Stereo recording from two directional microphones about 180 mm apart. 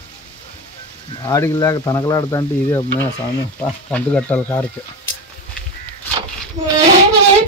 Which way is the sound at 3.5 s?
10° left (ahead or behind).